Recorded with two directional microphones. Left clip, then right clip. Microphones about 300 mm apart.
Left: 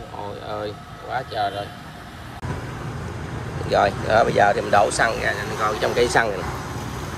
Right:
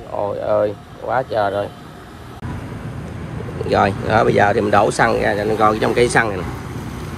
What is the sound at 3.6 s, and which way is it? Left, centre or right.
Speech, centre.